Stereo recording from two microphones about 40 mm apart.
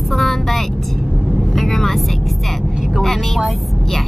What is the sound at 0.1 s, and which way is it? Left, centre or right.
Vehicle, centre.